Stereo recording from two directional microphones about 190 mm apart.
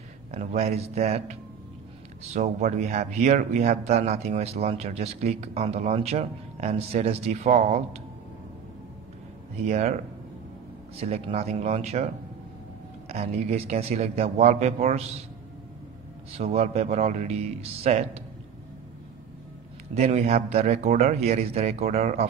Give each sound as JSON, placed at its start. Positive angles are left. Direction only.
{"t": 0.3, "sound": "speech", "side_deg": -35}
{"t": 9.7, "sound": "speech", "side_deg": -35}
{"t": 11.0, "sound": "speech", "side_deg": -30}
{"t": 13.1, "sound": "speech", "side_deg": -35}
{"t": 16.3, "sound": "speech", "side_deg": -35}
{"t": 19.9, "sound": "speech", "side_deg": -35}